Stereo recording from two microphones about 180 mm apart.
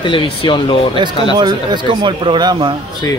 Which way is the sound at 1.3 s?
25° right (ahead or behind).